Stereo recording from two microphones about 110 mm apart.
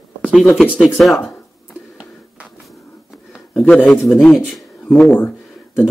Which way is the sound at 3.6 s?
5° left (ahead or behind).